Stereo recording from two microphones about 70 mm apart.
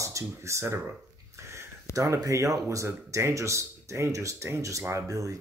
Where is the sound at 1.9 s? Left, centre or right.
Right.